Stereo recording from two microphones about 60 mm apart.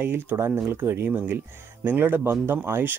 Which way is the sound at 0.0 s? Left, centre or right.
Right.